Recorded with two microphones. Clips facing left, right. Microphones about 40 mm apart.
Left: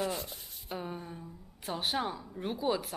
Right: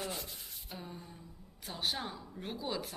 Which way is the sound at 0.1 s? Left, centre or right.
Left.